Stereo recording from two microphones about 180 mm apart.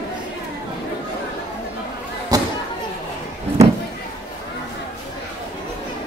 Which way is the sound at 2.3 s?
20° right (ahead or behind).